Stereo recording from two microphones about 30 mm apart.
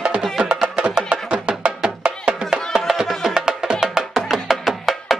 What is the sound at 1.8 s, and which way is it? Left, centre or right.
Music, right.